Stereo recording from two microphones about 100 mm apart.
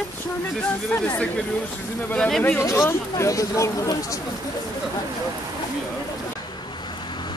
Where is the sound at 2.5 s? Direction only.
25° left (ahead or behind).